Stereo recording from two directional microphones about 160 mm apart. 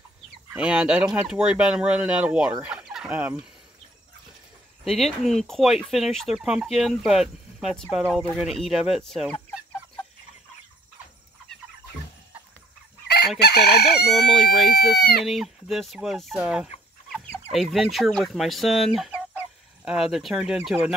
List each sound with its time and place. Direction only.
0.5 s speech: 5° right (ahead or behind)
2.6 s fowl: 5° right (ahead or behind)
4.8 s speech: centre (ahead or behind)
13.4 s chicken: 90° left
14.1 s speech: centre (ahead or behind)
17.9 s chicken: centre (ahead or behind)